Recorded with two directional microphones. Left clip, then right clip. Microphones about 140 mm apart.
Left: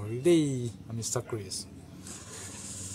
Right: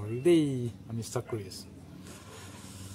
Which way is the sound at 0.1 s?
5° right (ahead or behind).